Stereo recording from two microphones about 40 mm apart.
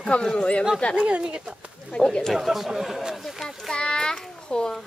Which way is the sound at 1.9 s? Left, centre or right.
Left.